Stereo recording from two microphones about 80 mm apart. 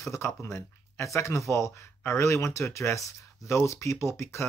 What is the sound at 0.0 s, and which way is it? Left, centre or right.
Speech, left.